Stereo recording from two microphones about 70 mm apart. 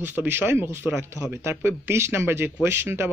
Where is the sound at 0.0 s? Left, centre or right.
Right.